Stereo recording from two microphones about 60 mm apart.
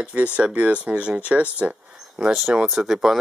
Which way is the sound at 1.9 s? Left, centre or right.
Centre.